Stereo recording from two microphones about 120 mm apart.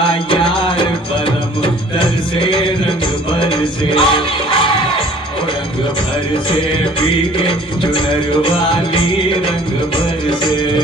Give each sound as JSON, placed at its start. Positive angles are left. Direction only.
{"t": 0.3, "sound": "music", "side_deg": 45}
{"t": 3.4, "sound": "music", "side_deg": 45}
{"t": 7.4, "sound": "music", "side_deg": 45}